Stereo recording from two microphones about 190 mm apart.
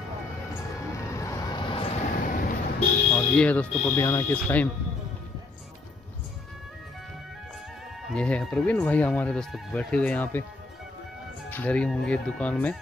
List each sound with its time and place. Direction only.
0.7 s vehicle: 15° left (ahead or behind)
2.1 s vehicle: 45° left (ahead or behind)
3.2 s speech: 10° left (ahead or behind)
8.1 s speech: 5° left (ahead or behind)
11.5 s speech: 5° left (ahead or behind)